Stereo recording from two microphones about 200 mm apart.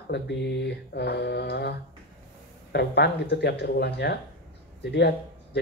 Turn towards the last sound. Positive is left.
turn(degrees=55)  # may be behind; listen again after turning